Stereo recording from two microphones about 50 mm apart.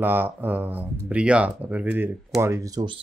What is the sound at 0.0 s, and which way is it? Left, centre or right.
Speech, right.